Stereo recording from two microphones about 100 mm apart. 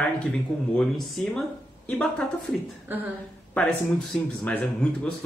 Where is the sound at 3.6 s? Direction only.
15° left (ahead or behind).